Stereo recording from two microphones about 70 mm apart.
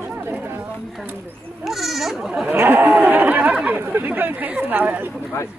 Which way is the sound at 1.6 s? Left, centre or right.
Centre.